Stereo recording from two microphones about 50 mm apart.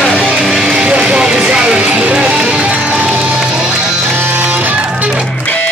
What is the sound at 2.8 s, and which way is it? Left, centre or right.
Music, right.